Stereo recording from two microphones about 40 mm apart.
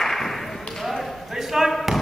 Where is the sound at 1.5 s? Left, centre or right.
Centre.